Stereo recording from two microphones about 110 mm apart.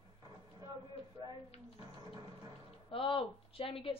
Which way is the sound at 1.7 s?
35° right (ahead or behind).